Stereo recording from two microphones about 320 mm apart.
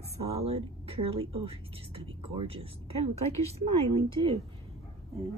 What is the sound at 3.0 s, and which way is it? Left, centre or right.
Speech, right.